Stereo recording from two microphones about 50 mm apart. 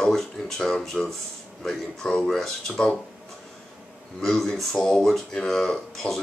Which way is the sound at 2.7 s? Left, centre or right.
Centre.